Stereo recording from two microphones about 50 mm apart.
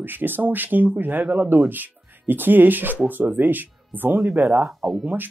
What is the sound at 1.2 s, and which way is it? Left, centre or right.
Speech, centre.